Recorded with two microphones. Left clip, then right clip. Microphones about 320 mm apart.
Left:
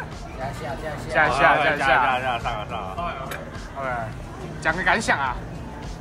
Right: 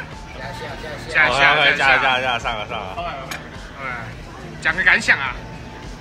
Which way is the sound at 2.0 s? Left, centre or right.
Right.